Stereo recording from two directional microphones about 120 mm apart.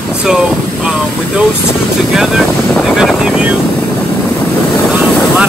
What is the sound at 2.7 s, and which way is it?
Speech, centre (ahead or behind).